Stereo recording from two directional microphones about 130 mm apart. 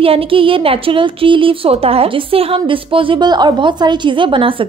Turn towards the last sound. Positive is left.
turn(degrees=-40)  # may be behind; listen again after turning